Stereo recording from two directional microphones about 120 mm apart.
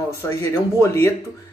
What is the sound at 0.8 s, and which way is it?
Speech, 25° left (ahead or behind).